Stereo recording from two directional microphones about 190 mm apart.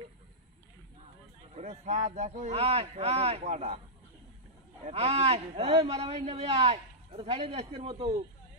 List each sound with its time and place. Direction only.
1.5 s a man's voice: 40° right (ahead or behind)
4.8 s a man's voice: 35° right (ahead or behind)